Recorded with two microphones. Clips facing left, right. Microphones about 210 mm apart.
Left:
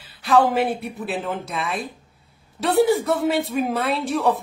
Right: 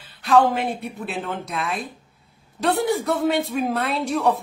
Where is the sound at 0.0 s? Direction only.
5° left (ahead or behind).